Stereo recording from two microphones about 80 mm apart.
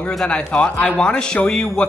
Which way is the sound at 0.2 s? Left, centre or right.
Centre.